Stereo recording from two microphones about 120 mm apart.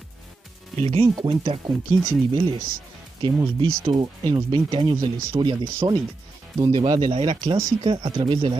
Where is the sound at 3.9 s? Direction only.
35° right (ahead or behind).